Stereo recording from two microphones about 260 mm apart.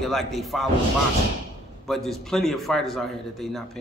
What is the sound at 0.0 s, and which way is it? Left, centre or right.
Speech, centre.